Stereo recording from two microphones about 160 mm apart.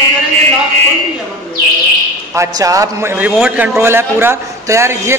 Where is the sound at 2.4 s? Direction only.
20° right (ahead or behind).